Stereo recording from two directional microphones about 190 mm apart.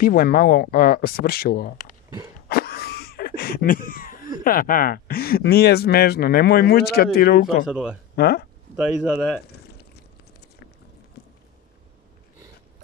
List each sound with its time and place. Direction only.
0.0 s speech: 50° left (ahead or behind)
2.4 s a sound: 55° left (ahead or behind)
4.4 s speech: 45° left (ahead or behind)
7.7 s speech: 5° right (ahead or behind)
8.2 s speech: 55° left (ahead or behind)
8.7 s speech: 5° right (ahead or behind)